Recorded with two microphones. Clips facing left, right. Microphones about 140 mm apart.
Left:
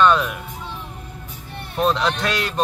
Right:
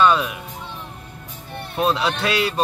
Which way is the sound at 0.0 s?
5° right (ahead or behind).